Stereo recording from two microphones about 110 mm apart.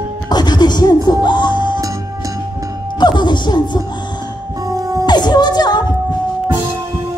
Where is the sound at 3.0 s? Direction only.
40° left (ahead or behind).